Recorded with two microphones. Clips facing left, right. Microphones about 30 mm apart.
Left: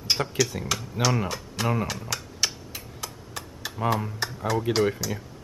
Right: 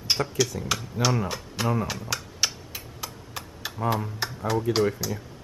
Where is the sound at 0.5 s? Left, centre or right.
Left.